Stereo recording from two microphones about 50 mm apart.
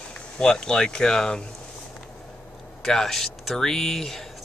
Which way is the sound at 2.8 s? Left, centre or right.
Centre.